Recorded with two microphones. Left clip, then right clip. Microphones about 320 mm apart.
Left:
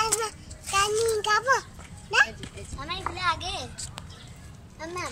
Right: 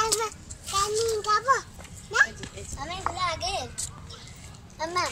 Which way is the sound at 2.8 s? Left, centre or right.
Right.